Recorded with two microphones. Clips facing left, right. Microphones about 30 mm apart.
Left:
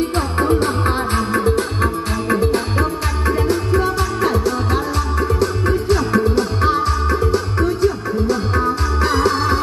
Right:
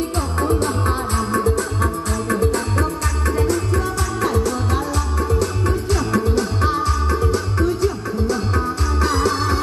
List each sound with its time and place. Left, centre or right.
0.4 s music: left; by 9.6 s centre